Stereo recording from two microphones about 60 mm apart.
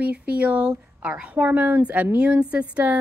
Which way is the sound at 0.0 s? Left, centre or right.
Right.